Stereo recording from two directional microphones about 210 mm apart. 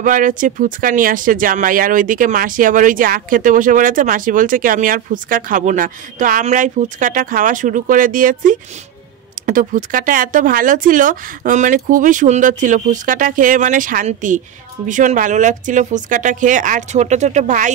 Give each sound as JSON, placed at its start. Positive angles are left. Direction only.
{"t": 0.0, "sound": "speech", "side_deg": -40}